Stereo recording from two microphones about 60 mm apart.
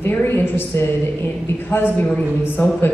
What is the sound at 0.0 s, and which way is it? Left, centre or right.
A woman's voice, left.